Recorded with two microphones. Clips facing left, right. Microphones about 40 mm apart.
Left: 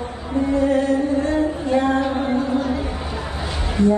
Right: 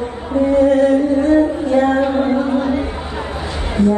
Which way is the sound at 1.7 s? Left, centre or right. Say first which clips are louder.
Right 5 dB; right.